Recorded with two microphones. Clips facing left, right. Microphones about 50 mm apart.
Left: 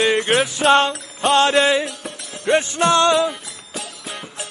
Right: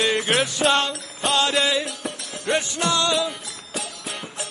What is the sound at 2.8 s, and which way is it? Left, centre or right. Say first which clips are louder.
Music: left 8 dB; left.